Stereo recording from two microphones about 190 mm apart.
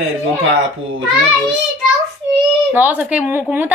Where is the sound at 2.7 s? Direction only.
10° right (ahead or behind).